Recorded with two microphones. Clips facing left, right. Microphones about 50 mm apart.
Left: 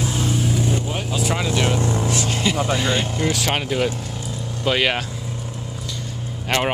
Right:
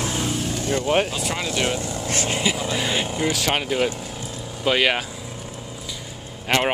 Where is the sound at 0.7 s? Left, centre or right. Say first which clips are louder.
Right 6 dB; right.